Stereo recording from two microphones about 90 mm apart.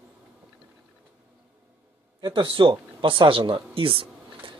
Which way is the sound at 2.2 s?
65° right (ahead or behind).